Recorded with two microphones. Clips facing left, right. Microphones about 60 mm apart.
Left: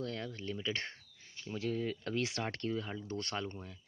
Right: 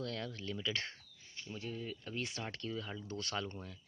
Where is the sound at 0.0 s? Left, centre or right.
Left.